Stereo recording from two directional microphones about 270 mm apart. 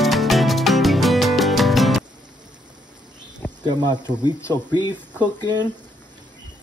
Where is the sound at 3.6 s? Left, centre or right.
Centre.